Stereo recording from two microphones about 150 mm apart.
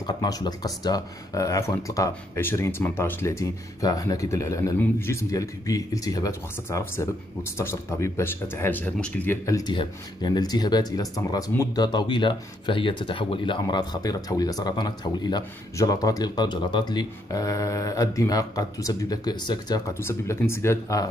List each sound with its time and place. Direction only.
0.0 s speech: 25° left (ahead or behind)
9.6 s speech: 30° left (ahead or behind)
19.9 s speech: 15° left (ahead or behind)